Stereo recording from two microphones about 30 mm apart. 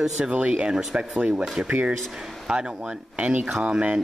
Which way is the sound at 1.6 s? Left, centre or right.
Right.